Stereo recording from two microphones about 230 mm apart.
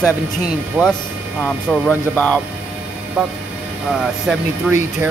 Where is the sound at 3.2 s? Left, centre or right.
Centre.